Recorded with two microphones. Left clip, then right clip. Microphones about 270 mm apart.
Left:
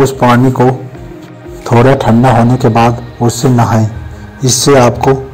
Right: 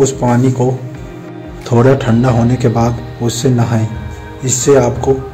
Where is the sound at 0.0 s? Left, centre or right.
Centre.